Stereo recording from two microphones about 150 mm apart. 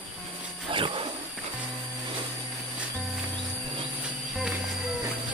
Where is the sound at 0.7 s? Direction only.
35° right (ahead or behind).